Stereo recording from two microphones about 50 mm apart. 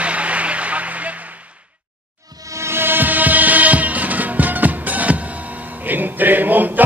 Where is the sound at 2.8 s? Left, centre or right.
Right.